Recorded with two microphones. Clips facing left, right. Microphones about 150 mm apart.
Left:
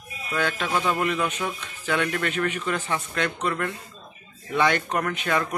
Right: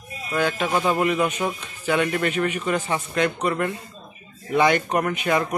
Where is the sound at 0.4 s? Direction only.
15° right (ahead or behind).